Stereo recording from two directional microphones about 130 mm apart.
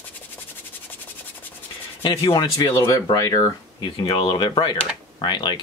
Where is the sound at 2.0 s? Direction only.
40° left (ahead or behind).